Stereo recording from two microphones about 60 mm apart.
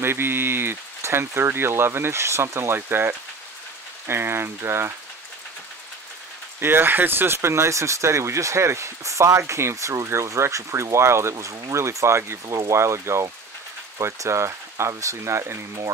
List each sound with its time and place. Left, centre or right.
0.0 s speech: right
6.6 s speech: right
9.4 s speech: right
12.4 s speech: right